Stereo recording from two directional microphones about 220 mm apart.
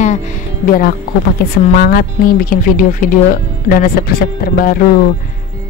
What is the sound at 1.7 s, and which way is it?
Speech, 40° left (ahead or behind).